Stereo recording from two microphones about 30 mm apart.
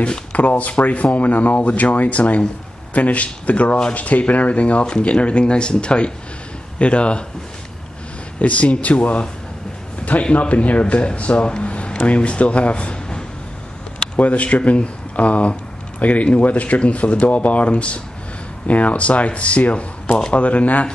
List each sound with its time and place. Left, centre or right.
0.3 s speech: left
8.4 s speech: left
10.3 s speech: left
11.4 s speech: left
11.7 s a sound: left
12.0 s speech: left
14.1 s speech: left
18.7 s speech: left